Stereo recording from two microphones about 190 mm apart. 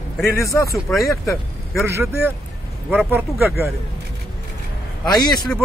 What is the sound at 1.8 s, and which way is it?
Speech, 10° right (ahead or behind).